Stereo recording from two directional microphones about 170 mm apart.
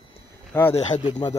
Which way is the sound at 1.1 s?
25° left (ahead or behind).